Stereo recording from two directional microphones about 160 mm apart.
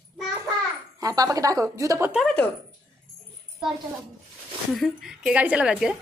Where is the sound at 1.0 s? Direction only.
20° right (ahead or behind).